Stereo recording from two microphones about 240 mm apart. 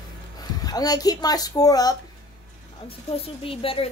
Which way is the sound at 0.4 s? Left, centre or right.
Centre.